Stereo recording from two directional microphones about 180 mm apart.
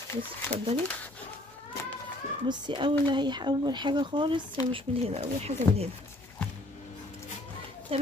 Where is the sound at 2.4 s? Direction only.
25° right (ahead or behind).